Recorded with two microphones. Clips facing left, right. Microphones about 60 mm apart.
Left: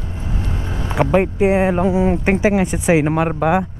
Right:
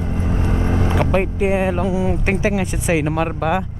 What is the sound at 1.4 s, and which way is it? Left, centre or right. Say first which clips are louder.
Speech: left 3 dB; centre.